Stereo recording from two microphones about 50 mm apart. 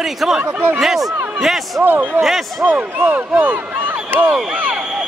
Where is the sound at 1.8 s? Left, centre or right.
Right.